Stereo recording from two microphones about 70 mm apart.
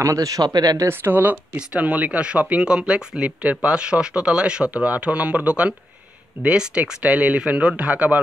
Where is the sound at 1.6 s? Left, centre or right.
Centre.